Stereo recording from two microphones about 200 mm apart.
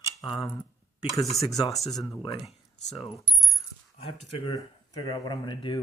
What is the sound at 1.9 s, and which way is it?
Speech, 15° left (ahead or behind).